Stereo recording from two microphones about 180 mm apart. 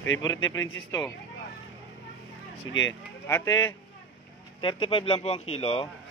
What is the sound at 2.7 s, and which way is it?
Speech, 90° left.